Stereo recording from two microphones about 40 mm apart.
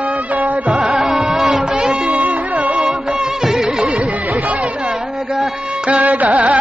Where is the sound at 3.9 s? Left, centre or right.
Right.